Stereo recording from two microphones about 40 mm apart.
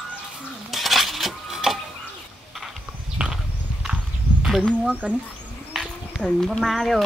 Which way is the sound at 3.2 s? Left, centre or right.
Right.